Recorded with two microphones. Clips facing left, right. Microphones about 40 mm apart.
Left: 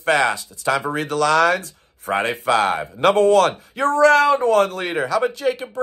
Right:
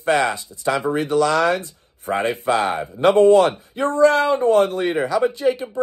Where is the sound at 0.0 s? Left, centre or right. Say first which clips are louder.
Left 1 dB; left.